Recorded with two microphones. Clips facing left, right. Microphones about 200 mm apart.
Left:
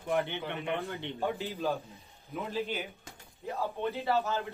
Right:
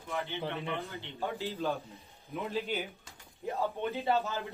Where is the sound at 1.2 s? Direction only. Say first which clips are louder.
Left 1 dB; 15° left (ahead or behind).